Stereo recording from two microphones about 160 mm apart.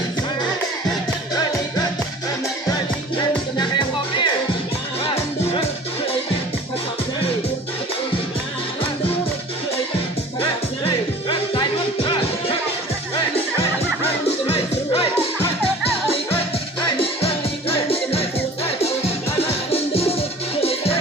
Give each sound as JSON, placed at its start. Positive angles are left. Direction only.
{"t": 3.2, "sound": "music", "side_deg": 30}
{"t": 10.4, "sound": "music", "side_deg": 30}
{"t": 14.4, "sound": "music", "side_deg": 35}
{"t": 16.1, "sound": "music", "side_deg": 35}